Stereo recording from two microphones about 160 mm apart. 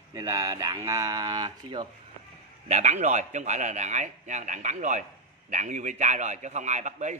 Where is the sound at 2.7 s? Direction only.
45° right (ahead or behind).